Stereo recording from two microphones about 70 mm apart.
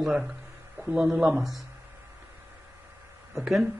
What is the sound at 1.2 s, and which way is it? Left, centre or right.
Speech, centre.